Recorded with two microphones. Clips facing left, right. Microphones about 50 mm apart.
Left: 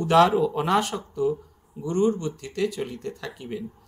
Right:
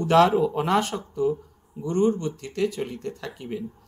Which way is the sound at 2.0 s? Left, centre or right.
Centre.